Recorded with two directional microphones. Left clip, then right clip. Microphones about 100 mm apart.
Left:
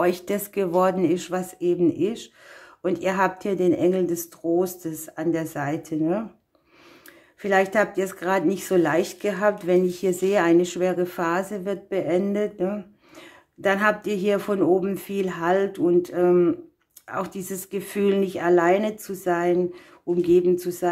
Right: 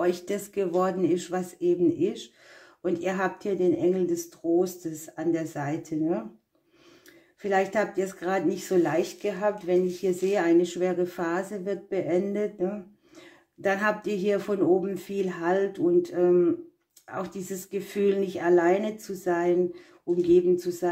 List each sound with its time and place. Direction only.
0.0 s speech: 45° left (ahead or behind)
7.4 s speech: 40° left (ahead or behind)